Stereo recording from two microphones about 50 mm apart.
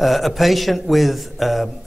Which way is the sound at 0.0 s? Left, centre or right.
Centre.